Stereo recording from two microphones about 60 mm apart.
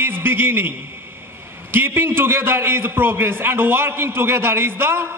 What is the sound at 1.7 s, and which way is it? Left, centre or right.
A man's voice, right.